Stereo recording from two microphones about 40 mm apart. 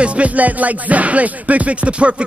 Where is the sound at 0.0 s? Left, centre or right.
Right.